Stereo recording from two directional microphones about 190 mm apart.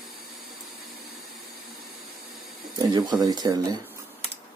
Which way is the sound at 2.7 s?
20° right (ahead or behind).